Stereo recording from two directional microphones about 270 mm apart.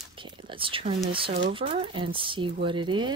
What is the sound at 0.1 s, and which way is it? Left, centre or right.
Speech, centre.